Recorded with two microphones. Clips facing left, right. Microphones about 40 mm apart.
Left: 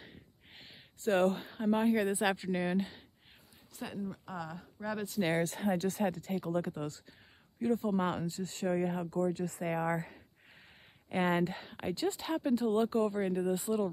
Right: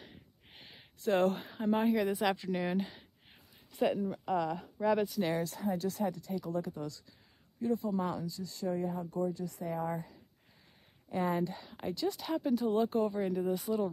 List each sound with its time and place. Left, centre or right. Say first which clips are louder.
0.0 s a sound: left 1 dB; centre
1.0 s a woman's voice: even; centre
1.4 s a woman's voice: even; centre
3.7 s speech: right 9 dB; right
5.2 s speech: left 2 dB; left
11.7 s speech: left 1 dB; left
12.4 s a woman's voice: even; centre